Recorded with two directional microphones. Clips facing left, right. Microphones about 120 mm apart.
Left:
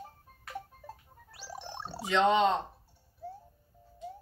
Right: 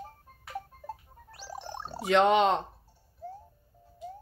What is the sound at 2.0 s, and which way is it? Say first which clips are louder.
Speech: right 3 dB; 60° right (ahead or behind).